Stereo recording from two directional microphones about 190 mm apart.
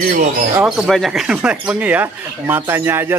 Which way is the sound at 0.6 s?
5° right (ahead or behind).